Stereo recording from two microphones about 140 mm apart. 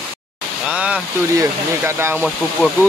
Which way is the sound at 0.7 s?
10° right (ahead or behind).